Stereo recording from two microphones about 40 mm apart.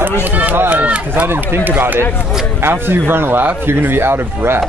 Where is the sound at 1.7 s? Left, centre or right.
Right.